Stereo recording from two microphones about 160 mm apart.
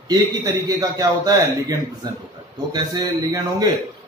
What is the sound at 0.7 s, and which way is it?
Speech, 20° right (ahead or behind).